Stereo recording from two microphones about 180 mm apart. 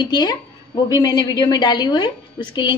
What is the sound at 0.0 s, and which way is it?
A woman's voice, 25° left (ahead or behind).